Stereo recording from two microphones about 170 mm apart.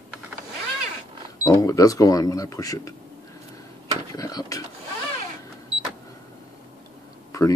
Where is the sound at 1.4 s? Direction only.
20° left (ahead or behind).